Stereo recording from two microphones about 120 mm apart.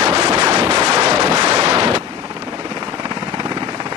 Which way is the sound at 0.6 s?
55° right (ahead or behind).